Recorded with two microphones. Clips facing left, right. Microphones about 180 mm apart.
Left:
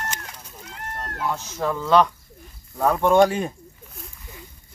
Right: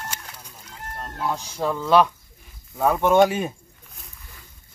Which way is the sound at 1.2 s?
10° right (ahead or behind).